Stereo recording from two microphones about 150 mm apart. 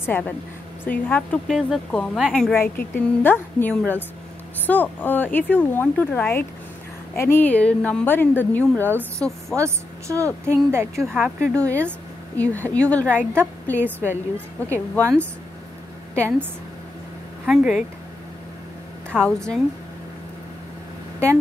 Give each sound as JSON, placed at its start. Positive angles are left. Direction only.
{"t": 0.0, "sound": "a woman's voice", "side_deg": 15}
{"t": 9.6, "sound": "a woman's voice", "side_deg": -20}
{"t": 11.6, "sound": "a woman's voice", "side_deg": 10}
{"t": 13.7, "sound": "a woman's voice", "side_deg": -15}
{"t": 16.2, "sound": "a woman's voice", "side_deg": -15}
{"t": 17.5, "sound": "speech", "side_deg": -5}
{"t": 19.0, "sound": "speech", "side_deg": 5}